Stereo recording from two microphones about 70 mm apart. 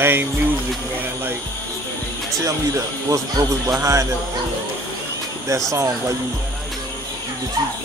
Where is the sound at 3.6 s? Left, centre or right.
Right.